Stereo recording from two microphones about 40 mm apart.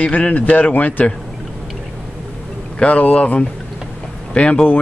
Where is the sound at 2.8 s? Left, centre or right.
Left.